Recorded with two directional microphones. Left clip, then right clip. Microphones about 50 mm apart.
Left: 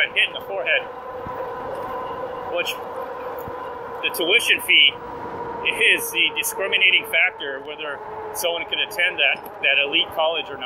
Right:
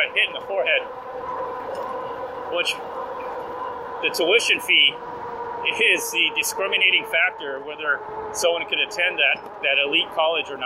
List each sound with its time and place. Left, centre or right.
0.0 s vehicle: right
4.0 s speech: right
9.6 s speech: centre
9.8 s speech: right